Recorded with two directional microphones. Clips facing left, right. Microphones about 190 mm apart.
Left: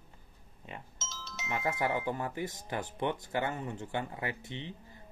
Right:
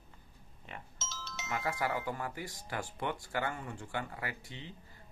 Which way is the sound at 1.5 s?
20° left (ahead or behind).